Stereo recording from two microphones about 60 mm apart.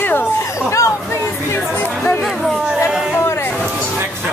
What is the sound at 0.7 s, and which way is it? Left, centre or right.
Speech, left.